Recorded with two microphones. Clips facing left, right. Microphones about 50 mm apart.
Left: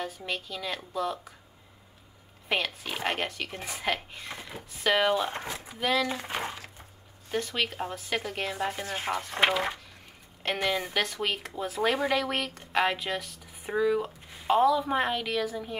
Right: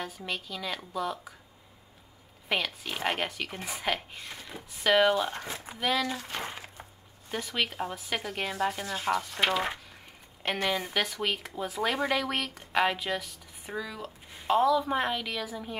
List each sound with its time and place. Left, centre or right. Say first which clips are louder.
0.0 s speech: left 2 dB; centre
2.4 s speech: left 1 dB; centre
6.0 s speech: left 2 dB; left
6.5 s a sound: even; centre
7.2 s speech: left 2 dB; centre
8.8 s speech: right 2 dB; left
10.4 s speech: left 1 dB; centre
13.7 s speech: left 10 dB; centre
14.5 s speech: left 1 dB; centre